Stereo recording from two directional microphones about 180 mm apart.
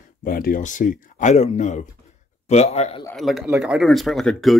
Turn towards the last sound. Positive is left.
turn(degrees=0)  # may be behind; listen again after turning